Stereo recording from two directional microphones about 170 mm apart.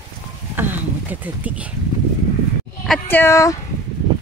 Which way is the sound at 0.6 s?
10° right (ahead or behind).